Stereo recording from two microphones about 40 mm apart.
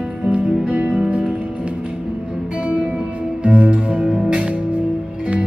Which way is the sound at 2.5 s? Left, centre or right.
Right.